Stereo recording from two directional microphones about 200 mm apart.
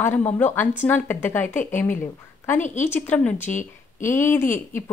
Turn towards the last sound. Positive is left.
turn(degrees=10)  # may be behind; listen again after turning